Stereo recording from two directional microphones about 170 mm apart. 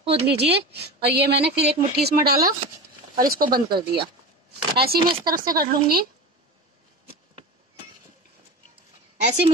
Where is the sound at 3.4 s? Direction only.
25° right (ahead or behind).